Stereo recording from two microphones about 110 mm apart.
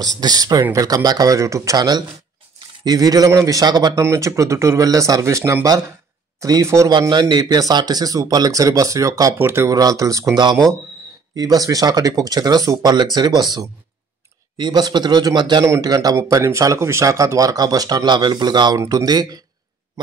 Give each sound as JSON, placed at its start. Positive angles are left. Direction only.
{"t": 0.0, "sound": "speech", "side_deg": -35}
{"t": 4.0, "sound": "speech", "side_deg": -25}
{"t": 6.9, "sound": "speech", "side_deg": -40}
{"t": 15.6, "sound": "speech", "side_deg": -30}